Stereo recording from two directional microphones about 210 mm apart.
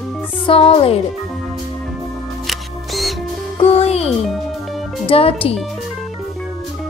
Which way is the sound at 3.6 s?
30° left (ahead or behind).